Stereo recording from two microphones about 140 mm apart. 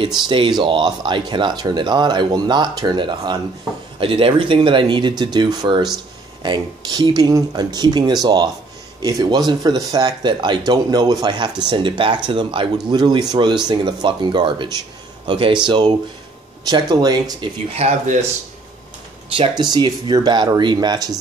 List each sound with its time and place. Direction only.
0.0 s speech: 35° right (ahead or behind)
17.7 s speech: 50° right (ahead or behind)
19.3 s speech: 40° right (ahead or behind)